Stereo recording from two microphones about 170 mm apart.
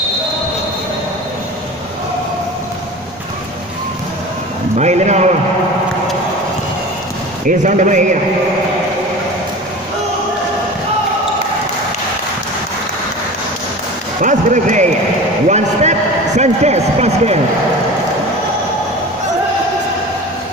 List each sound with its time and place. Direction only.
4.7 s a man's voice: 40° right (ahead or behind)
7.4 s a man's voice: 45° right (ahead or behind)
14.2 s a man's voice: 45° right (ahead or behind)
15.4 s a sound: 40° right (ahead or behind)
16.3 s a man's voice: 40° right (ahead or behind)